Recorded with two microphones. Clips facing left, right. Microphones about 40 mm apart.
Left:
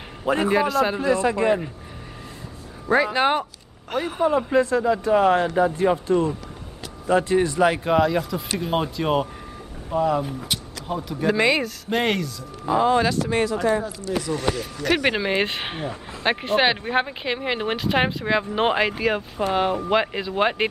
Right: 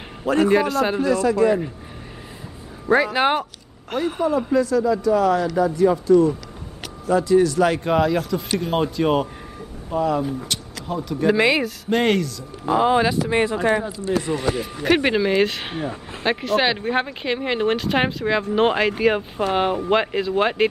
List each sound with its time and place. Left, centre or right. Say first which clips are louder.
0.2 s a man's voice: right 3 dB; centre
0.5 s speech: right 2 dB; centre
1.0 s speech: right 2 dB; left
2.9 s speech: right 2 dB; centre
4.2 s speech: left 1 dB; left
7.6 s speech: even; centre
12.6 s speech: right 1 dB; centre
13.3 s speech: right 2 dB; right
15.0 s speech: right 3 dB; centre
19.0 s speech: right 3 dB; centre